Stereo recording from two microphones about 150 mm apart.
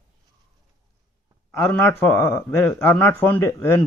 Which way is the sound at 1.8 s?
15° left (ahead or behind).